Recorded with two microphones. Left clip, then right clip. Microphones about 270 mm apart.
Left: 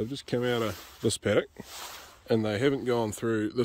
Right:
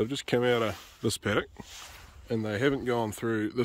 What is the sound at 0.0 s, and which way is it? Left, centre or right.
Speech, centre.